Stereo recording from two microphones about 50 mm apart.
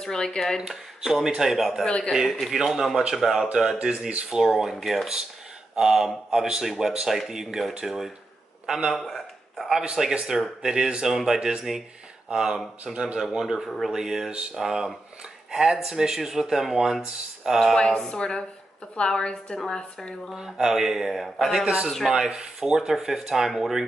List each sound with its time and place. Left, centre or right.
0.0 s a woman's voice: centre
0.6 s speech: centre
1.9 s a woman's voice: centre
2.4 s speech: centre
9.0 s a sound: centre
9.7 s speech: centre
13.4 s speech: centre
17.7 s a woman's voice: centre
20.3 s speech: centre
22.1 s speech: centre